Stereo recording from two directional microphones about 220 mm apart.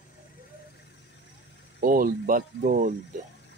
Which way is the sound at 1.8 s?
40° right (ahead or behind).